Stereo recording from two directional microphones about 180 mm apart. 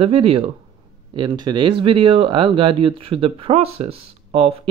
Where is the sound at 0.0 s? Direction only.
30° right (ahead or behind).